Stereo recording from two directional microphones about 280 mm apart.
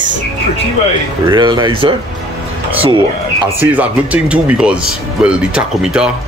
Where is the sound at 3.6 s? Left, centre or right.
Centre.